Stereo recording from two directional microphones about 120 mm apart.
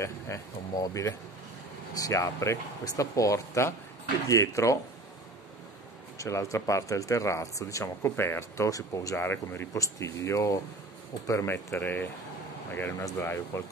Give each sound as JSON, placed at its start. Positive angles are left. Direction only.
{"t": 0.0, "sound": "speech", "side_deg": 25}
{"t": 6.1, "sound": "speech", "side_deg": 25}